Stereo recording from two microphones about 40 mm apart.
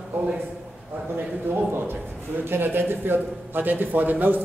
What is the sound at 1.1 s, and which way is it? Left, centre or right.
A man's voice, right.